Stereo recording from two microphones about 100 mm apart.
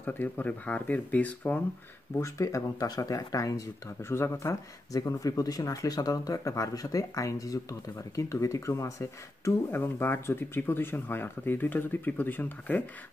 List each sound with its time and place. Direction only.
0.0 s speech: 20° left (ahead or behind)
2.1 s speech: 30° left (ahead or behind)